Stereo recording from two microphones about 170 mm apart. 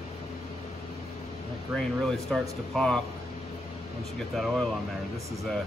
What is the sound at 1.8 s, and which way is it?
Speech, 5° left (ahead or behind).